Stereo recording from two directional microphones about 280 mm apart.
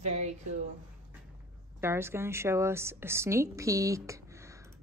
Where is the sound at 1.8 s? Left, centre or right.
Centre.